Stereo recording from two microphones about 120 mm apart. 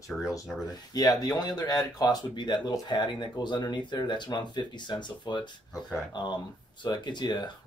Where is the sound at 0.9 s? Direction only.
35° left (ahead or behind).